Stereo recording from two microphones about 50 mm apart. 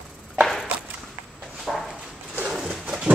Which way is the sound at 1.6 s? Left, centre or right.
Centre.